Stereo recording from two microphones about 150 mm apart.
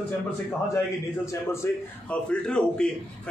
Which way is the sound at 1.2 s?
20° left (ahead or behind).